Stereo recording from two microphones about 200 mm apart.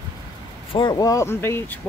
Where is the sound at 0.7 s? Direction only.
20° left (ahead or behind).